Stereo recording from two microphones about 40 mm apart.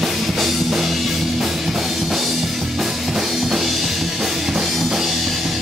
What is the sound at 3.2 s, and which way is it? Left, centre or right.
Music, centre.